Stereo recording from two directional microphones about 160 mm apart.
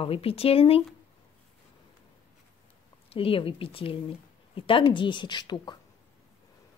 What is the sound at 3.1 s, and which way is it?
Speech, 35° left (ahead or behind).